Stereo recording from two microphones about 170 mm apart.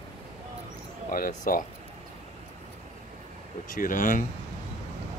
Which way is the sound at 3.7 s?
50° left (ahead or behind).